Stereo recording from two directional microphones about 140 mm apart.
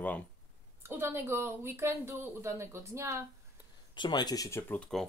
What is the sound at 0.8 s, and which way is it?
Speech, 15° right (ahead or behind).